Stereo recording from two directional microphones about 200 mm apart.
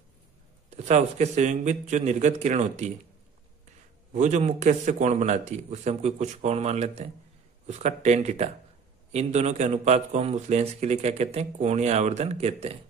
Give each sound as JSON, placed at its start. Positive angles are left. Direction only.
{"t": 0.7, "sound": "a man's voice", "side_deg": -35}
{"t": 4.1, "sound": "a man's voice", "side_deg": -35}